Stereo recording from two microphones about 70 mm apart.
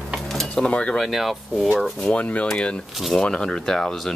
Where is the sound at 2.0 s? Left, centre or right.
Centre.